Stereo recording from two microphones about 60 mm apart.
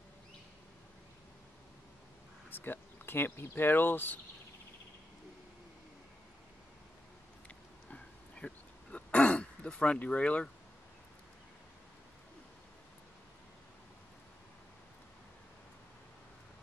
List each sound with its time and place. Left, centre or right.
2.5 s speech: left
7.4 s a sound: centre
9.9 s speech: left